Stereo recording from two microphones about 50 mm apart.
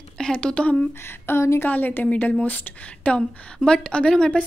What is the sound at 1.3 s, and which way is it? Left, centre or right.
Speech, left.